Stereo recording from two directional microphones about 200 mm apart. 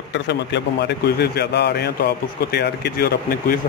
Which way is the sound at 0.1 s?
60° left (ahead or behind).